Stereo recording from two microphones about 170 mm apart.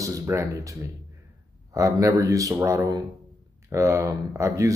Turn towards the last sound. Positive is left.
turn(degrees=-15)  # may be behind; listen again after turning